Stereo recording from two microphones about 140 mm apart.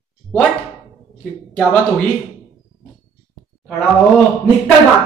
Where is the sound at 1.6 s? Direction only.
10° left (ahead or behind).